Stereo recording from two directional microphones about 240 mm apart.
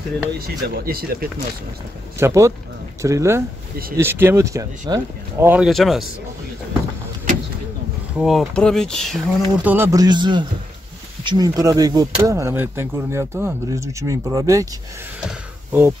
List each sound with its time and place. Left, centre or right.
0.4 s speech: right
2.1 s speech: centre
8.2 s speech: centre
15.2 s a sound: centre